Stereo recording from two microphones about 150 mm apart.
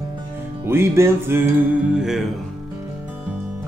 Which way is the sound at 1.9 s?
5° right (ahead or behind).